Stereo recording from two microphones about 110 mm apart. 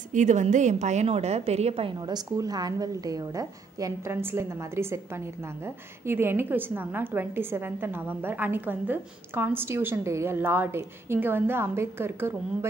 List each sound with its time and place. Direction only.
0.2 s a woman's voice: 90° right; by 1.9 s 75° right (ahead or behind)
1.9 s a woman's voice: 40° right (ahead or behind); by 12.4 s 20° right (ahead or behind)